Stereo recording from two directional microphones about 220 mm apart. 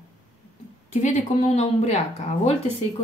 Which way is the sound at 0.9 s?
35° left (ahead or behind).